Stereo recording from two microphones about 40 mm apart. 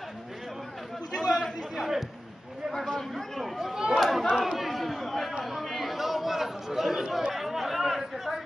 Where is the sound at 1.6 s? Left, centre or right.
Centre.